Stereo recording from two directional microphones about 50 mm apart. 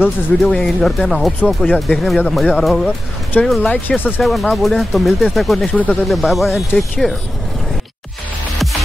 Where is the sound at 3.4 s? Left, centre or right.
Left.